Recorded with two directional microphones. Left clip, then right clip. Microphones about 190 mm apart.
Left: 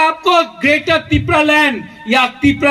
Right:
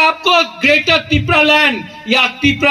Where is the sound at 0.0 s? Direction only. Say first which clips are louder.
Even; 45° left (ahead or behind).